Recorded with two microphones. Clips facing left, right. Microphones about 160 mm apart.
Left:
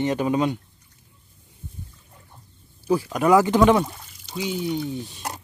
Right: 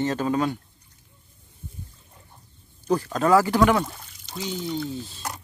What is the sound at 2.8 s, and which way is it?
A man's voice, 10° left (ahead or behind).